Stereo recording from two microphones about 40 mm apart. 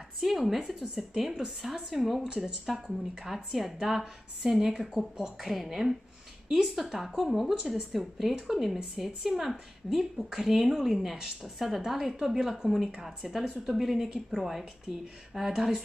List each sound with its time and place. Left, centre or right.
0.2 s a woman's voice: centre
2.2 s speech: right
2.6 s a woman's voice: centre